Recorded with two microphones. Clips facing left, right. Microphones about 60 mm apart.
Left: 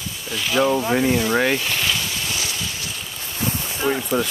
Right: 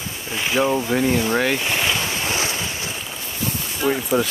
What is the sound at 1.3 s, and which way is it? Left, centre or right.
Speech, centre.